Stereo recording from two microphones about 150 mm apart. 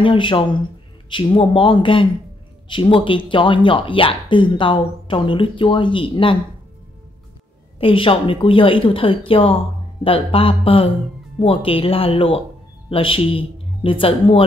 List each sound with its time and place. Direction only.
0.0 s speech: 35° left (ahead or behind)
7.8 s speech: 35° left (ahead or behind)